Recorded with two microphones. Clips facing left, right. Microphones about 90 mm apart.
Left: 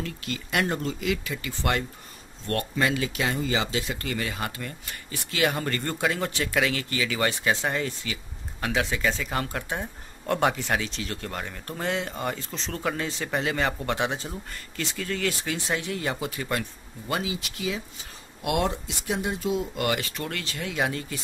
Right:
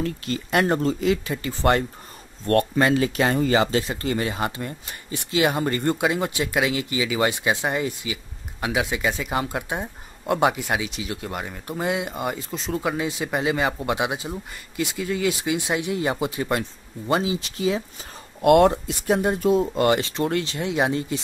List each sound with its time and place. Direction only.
0.0 s speech: 35° right (ahead or behind)
18.4 s speech: 55° right (ahead or behind)
19.7 s speech: 30° right (ahead or behind)